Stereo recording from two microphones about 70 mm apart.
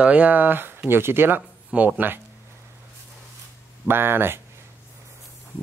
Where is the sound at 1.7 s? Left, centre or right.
Centre.